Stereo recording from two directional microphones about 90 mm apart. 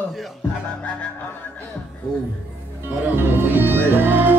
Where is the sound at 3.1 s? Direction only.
25° right (ahead or behind).